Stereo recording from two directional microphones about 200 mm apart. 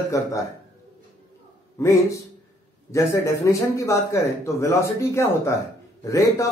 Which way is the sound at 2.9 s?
15° left (ahead or behind).